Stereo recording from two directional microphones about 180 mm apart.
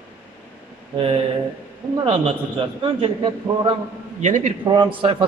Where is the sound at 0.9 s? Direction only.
30° right (ahead or behind).